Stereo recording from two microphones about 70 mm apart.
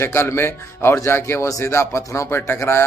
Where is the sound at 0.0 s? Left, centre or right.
Left.